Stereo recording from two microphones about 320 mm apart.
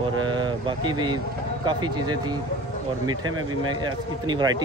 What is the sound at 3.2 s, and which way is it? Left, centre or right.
Speech, right.